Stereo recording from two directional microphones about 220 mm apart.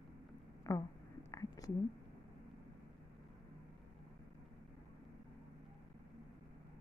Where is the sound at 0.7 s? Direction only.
15° left (ahead or behind).